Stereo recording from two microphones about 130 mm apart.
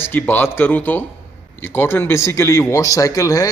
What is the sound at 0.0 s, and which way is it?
Speech, 15° left (ahead or behind).